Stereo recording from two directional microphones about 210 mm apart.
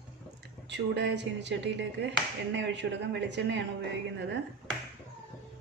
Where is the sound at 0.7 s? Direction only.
55° right (ahead or behind).